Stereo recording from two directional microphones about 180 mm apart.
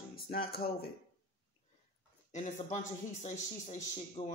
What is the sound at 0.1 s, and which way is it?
Music, 55° left (ahead or behind).